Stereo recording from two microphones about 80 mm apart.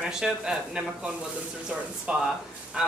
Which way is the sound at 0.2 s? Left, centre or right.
Centre.